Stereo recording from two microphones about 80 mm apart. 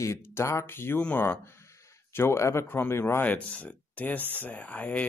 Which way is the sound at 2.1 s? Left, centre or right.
Left.